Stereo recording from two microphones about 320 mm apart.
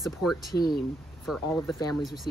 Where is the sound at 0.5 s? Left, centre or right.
Left.